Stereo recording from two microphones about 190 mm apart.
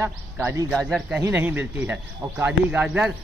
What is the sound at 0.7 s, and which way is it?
Speech, centre (ahead or behind).